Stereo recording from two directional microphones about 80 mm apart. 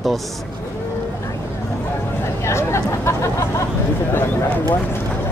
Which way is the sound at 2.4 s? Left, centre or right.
Left.